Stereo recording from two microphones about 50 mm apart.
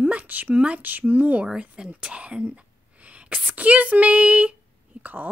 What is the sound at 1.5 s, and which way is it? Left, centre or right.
A woman's voice, centre.